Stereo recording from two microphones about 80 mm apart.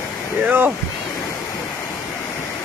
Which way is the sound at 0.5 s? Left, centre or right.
Centre.